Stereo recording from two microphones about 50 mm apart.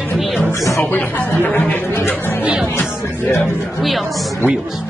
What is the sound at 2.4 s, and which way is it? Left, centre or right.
Music, right.